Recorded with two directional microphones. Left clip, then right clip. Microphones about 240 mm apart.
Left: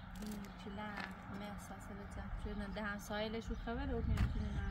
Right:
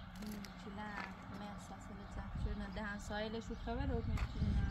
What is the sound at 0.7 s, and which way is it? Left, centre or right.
Music, left.